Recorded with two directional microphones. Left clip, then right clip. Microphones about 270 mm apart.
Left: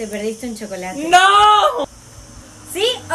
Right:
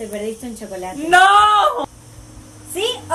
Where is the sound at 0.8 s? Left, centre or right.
Centre.